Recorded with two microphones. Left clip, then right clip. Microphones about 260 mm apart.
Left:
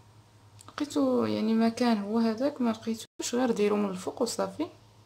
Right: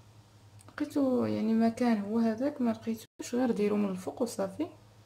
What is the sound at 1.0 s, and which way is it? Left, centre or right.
Speech, left.